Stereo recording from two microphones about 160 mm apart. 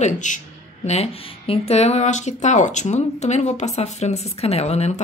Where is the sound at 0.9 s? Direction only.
40° left (ahead or behind).